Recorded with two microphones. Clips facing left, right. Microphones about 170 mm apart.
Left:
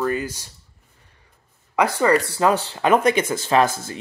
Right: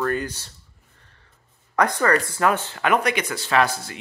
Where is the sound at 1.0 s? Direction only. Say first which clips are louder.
Left 1 dB; 10° left (ahead or behind).